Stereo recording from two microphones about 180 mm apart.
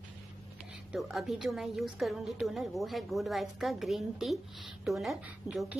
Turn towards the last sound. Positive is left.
turn(degrees=0)  # may be behind; listen again after turning